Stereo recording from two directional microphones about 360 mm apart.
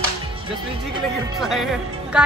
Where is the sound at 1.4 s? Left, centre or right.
Centre.